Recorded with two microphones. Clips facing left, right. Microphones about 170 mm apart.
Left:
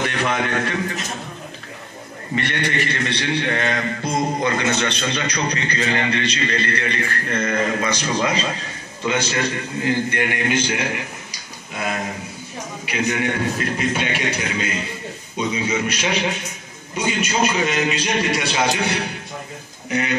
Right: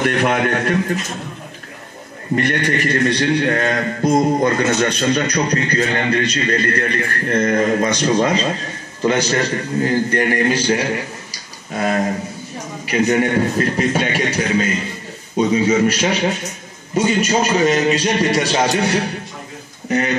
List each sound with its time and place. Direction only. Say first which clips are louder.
0.0 s a man's voice: right 5 dB; 50° right (ahead or behind)
2.3 s a man's voice: right 5 dB; 45° right (ahead or behind)